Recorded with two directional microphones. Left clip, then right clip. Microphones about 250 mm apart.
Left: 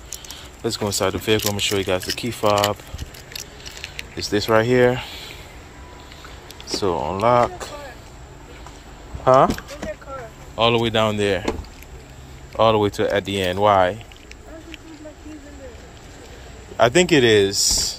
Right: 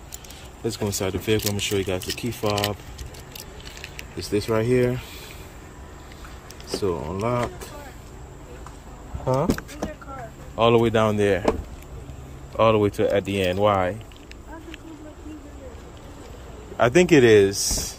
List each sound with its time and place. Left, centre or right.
0.7 s speech: centre
3.8 s speech: centre
6.7 s speech: centre
9.2 s speech: centre
10.5 s speech: centre
12.5 s speech: centre
16.7 s speech: centre